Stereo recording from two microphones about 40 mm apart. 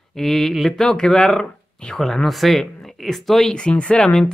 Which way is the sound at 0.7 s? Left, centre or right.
Centre.